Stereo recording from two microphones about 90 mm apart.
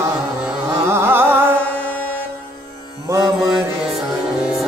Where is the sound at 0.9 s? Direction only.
25° right (ahead or behind).